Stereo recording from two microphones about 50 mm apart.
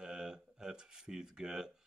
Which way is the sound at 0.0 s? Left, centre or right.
Centre.